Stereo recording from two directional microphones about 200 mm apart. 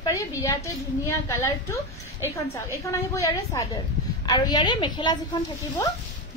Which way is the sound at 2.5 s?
15° left (ahead or behind).